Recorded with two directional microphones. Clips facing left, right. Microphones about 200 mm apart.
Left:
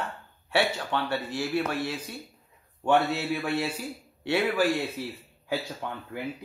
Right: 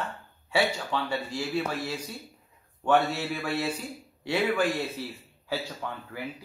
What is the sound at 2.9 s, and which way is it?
Speech, 20° left (ahead or behind).